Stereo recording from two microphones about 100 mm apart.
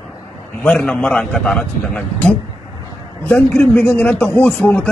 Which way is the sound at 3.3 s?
15° left (ahead or behind).